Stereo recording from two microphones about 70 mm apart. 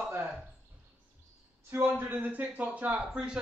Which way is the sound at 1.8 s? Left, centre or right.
Right.